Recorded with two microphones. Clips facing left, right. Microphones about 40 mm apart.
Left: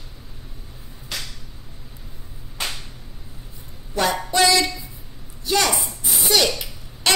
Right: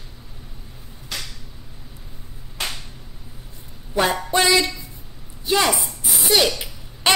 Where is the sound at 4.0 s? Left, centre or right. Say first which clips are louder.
Even; right.